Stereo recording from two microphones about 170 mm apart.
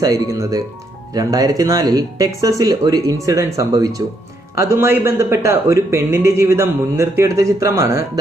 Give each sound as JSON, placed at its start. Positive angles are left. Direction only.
{"t": 0.0, "sound": "a man's voice", "side_deg": -20}